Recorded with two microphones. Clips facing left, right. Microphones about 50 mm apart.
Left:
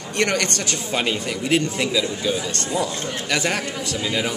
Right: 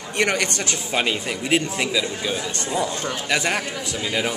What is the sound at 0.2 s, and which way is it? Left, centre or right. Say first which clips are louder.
A man's voice: even; centre.